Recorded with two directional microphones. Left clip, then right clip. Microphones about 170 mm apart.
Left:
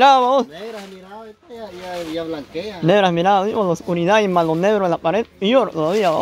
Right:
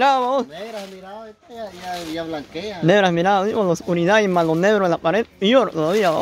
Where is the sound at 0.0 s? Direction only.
35° left (ahead or behind).